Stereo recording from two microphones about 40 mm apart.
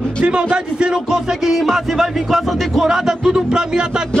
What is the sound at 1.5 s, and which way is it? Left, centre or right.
A man's voice, centre.